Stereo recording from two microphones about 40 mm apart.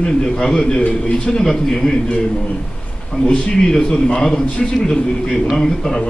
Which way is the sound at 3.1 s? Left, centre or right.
Left.